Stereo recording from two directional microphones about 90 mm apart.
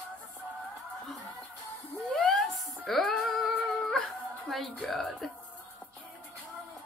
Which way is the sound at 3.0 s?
10° left (ahead or behind).